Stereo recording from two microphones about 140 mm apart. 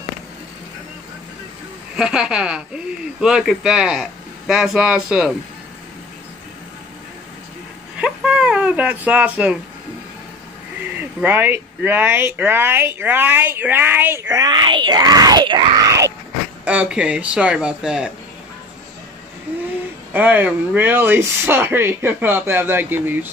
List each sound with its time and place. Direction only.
2.0 s speech: 5° right (ahead or behind)
8.0 s a sound: 5° right (ahead or behind)
11.0 s speech: 15° right (ahead or behind)
16.6 s speech: 10° right (ahead or behind)
19.5 s a sound: 15° right (ahead or behind)
20.1 s speech: 15° right (ahead or behind)